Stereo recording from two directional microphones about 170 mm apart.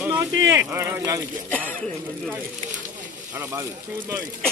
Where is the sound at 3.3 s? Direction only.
15° right (ahead or behind).